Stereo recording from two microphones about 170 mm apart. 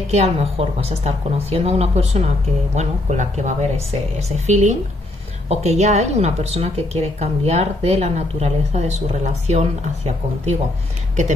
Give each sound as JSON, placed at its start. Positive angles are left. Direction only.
{"t": 0.1, "sound": "a woman's voice", "side_deg": -35}